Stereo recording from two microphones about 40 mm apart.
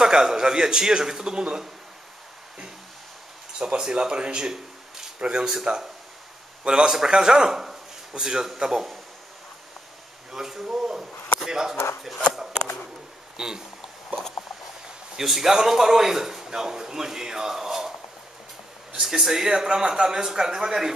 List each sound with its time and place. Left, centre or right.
0.0 s a man's voice: centre
3.5 s a man's voice: right
10.3 s speech: centre
13.4 s a man's voice: centre
15.1 s a man's voice: centre
18.9 s a man's voice: centre